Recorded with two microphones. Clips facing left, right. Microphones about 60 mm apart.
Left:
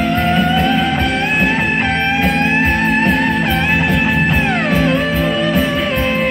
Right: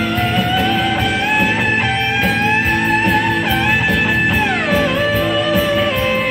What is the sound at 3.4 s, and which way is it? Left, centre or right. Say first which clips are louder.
Music: even; left.